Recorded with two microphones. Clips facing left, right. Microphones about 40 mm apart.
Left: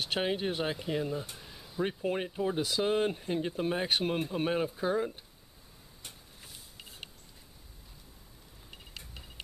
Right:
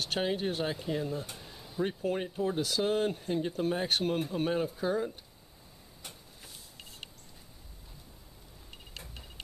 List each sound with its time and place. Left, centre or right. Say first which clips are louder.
0.0 s speech: even; centre
1.3 s a sound: right 1 dB; centre
1.8 s speech: even; centre